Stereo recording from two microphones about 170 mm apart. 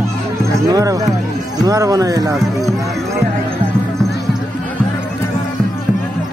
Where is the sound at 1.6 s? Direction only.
20° right (ahead or behind).